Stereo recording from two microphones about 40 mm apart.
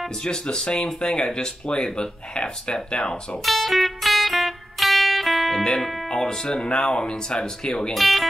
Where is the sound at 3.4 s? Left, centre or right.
Centre.